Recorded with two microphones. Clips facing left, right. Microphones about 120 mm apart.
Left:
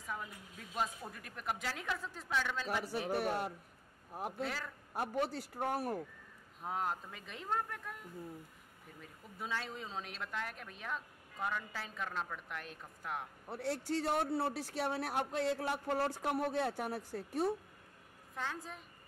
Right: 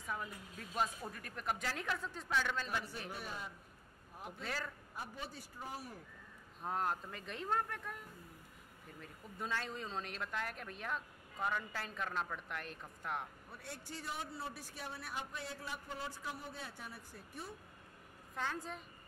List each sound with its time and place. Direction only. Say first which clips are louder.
0.0 s speech: even; centre (ahead or behind)
3.1 s a man's voice: left 11 dB; 65° left (ahead or behind)
6.6 s speech: even; 5° left (ahead or behind)
9.0 s speech: right 1 dB; 5° left (ahead or behind)
13.5 s a man's voice: left 12 dB; 75° left (ahead or behind)
18.3 s speech: right 1 dB; centre (ahead or behind)